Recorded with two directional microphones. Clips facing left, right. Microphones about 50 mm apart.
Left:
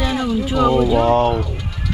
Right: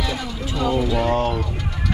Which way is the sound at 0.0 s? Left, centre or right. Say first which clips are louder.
Left 7 dB; left.